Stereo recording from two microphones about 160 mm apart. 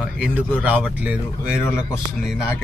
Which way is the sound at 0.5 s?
10° right (ahead or behind).